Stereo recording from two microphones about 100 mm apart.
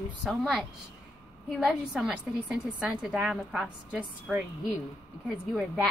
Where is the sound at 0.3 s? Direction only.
Centre (ahead or behind).